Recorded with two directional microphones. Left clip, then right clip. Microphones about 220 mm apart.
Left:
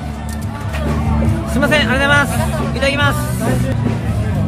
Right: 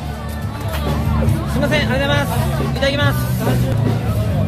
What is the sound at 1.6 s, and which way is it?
Speech, 25° left (ahead or behind).